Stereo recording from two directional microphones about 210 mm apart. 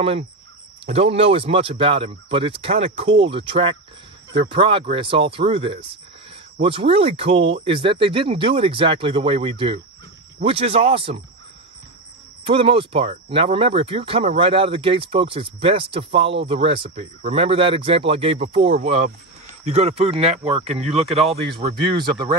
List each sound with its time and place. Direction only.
0.8 s speech: 30° right (ahead or behind)
12.4 s speech: 25° right (ahead or behind)